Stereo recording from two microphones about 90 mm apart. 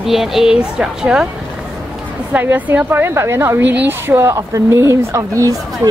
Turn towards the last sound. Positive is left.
turn(degrees=-40)  # may be behind; listen again after turning